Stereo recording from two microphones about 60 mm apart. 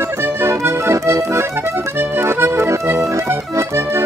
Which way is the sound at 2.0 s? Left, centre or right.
Right.